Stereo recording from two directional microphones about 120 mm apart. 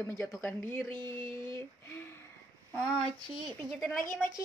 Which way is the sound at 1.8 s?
20° left (ahead or behind).